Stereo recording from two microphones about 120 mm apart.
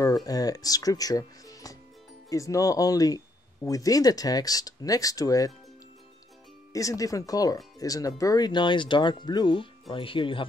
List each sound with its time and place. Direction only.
0.0 s speech: 30° left (ahead or behind)
6.7 s speech: 30° left (ahead or behind); by 10.4 s 45° left (ahead or behind)